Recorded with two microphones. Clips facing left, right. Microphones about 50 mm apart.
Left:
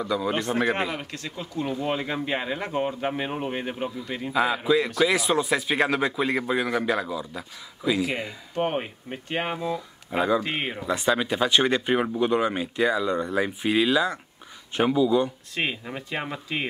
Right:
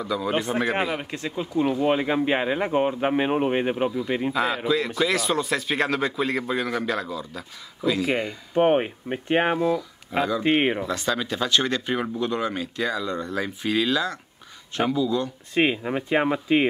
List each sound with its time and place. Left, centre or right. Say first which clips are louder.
0.0 s speech: right 1 dB; centre; by 3.9 s right
4.3 s speech: left 4 dB; centre
8.0 s speech: right 3 dB; centre
8.5 s speech: right 7 dB; centre
10.1 s speech: left 1 dB; centre
10.4 s speech: right 8 dB; right
10.9 s speech: left 2 dB; centre
15.5 s speech: right 7 dB; centre